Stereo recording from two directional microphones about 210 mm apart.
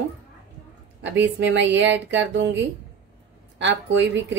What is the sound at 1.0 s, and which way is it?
A woman's voice, 60° right (ahead or behind).